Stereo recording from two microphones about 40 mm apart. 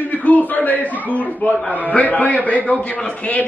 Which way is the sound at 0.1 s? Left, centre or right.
Left.